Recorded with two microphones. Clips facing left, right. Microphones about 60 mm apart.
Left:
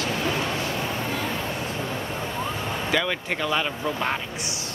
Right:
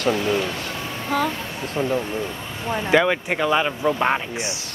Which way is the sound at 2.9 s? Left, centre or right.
Right.